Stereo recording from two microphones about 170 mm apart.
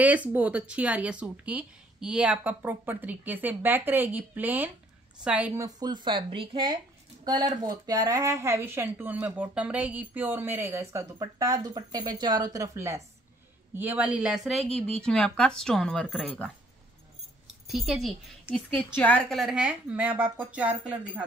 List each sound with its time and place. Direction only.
0.0 s a woman's voice: 10° right (ahead or behind)
17.6 s a woman's voice: 5° right (ahead or behind)
18.5 s a woman's voice: 10° left (ahead or behind); by 21.0 s 5° right (ahead or behind)